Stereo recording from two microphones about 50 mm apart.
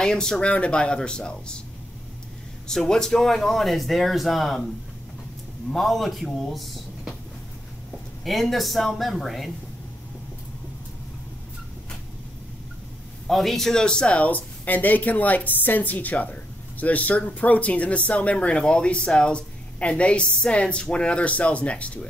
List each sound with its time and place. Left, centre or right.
0.0 s a woman's voice: centre
2.7 s speech: centre
5.7 s speech: centre
8.2 s speech: centre
13.3 s speech: centre
13.8 s a woman's voice: left